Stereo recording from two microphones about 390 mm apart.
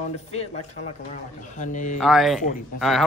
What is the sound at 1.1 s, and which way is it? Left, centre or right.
Speech, centre.